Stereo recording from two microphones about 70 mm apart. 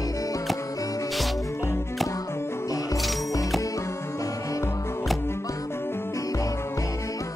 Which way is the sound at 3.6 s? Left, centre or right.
Left.